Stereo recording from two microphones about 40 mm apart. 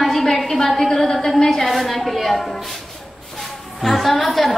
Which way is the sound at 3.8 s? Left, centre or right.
Centre.